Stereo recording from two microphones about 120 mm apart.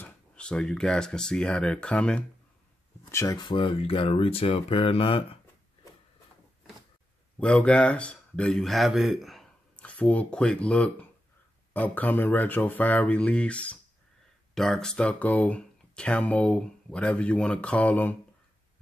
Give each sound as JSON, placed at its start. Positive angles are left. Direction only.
{"t": 0.0, "sound": "speech", "side_deg": 10}
{"t": 3.1, "sound": "speech", "side_deg": 25}
{"t": 3.3, "sound": "speech", "side_deg": 40}
{"t": 7.3, "sound": "speech", "side_deg": 10}